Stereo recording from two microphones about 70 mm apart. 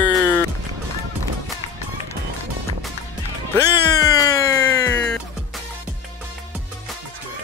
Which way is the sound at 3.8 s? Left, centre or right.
Left.